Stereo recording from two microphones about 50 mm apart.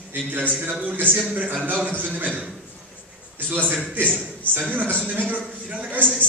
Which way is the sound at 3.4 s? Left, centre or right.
Right.